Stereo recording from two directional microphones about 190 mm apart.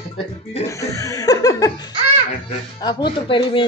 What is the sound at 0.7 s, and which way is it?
Laughter, 15° left (ahead or behind).